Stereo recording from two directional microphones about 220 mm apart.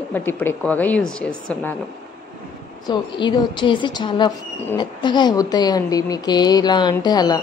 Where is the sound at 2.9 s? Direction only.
20° left (ahead or behind).